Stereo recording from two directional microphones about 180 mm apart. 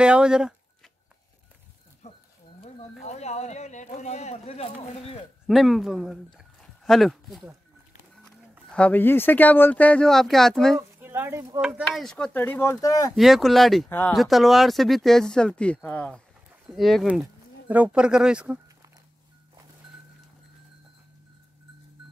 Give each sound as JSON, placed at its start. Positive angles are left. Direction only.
{"t": 0.0, "sound": "speech", "side_deg": -5}
{"t": 2.0, "sound": "a sound", "side_deg": 40}
{"t": 3.1, "sound": "speech", "side_deg": 40}
{"t": 5.5, "sound": "speech", "side_deg": 0}
{"t": 10.8, "sound": "speech", "side_deg": -10}
{"t": 11.6, "sound": "speech", "side_deg": 0}
{"t": 13.1, "sound": "speech", "side_deg": 0}
{"t": 13.8, "sound": "speech", "side_deg": 10}
{"t": 14.1, "sound": "speech", "side_deg": 0}